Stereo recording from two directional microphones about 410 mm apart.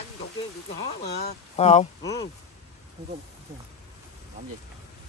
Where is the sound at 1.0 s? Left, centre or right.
Centre.